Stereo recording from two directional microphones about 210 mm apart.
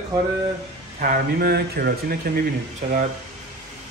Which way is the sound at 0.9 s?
40° right (ahead or behind).